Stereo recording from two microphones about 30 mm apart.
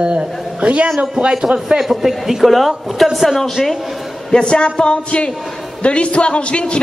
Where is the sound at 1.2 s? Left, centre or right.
Right.